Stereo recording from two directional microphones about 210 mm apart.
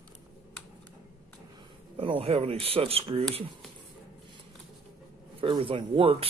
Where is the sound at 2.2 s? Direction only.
30° right (ahead or behind).